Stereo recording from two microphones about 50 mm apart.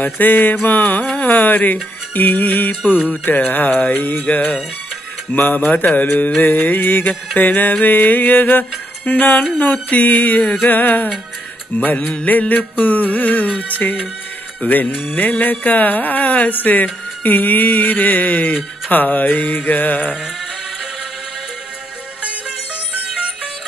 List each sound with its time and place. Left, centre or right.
0.0 s speech: left
5.3 s speech: left
10.4 s music: centre
10.7 s speech: left
11.8 s music: left
12.3 s speech: left